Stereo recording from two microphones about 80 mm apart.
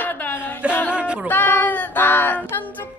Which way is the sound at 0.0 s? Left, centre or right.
Left.